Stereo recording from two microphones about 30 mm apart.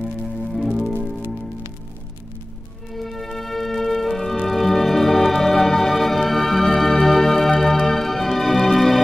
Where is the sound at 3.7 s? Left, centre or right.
Centre.